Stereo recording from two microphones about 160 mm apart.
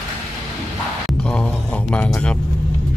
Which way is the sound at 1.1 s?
5° left (ahead or behind).